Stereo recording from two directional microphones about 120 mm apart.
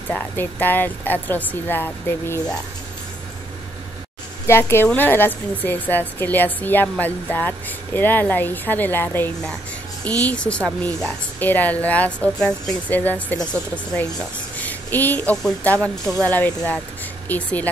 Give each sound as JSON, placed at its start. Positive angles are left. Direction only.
{"t": 0.1, "sound": "a woman's voice", "side_deg": 15}
{"t": 4.5, "sound": "a woman's voice", "side_deg": 20}